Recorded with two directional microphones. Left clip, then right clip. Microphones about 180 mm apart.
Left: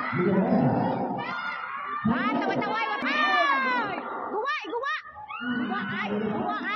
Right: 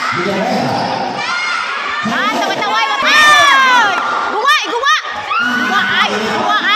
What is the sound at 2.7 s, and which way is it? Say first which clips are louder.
Crowd: right 16 dB; 10° right (ahead or behind).